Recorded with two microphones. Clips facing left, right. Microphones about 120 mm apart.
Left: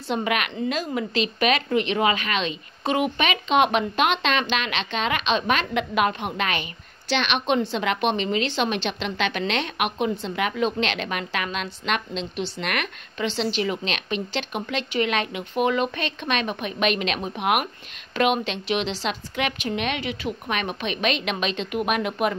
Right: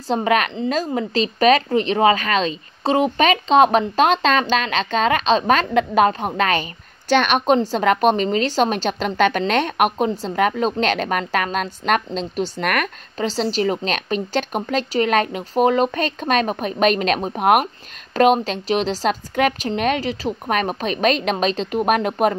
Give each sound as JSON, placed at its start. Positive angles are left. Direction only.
{"t": 0.1, "sound": "speech", "side_deg": -35}